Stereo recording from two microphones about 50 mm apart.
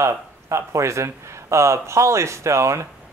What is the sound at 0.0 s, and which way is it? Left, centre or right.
A man's voice, right.